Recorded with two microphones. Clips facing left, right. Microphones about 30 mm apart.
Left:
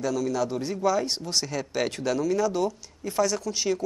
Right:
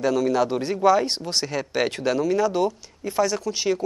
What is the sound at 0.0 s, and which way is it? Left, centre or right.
Speech, right.